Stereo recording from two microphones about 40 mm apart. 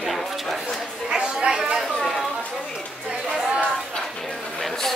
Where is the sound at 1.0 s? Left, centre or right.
Right.